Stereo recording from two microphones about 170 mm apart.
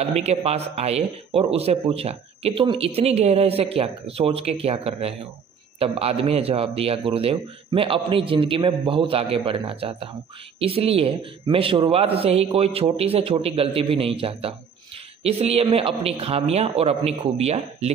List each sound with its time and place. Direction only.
0.1 s speech: 40° right (ahead or behind)